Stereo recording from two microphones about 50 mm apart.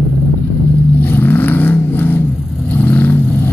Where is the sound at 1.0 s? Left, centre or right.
Left.